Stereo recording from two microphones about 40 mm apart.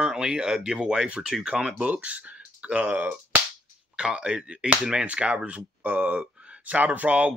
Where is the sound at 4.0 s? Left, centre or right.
Right.